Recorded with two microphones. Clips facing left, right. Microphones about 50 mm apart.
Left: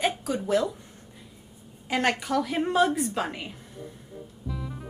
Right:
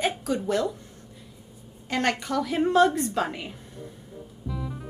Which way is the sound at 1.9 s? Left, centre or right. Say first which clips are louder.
Left 1 dB; centre.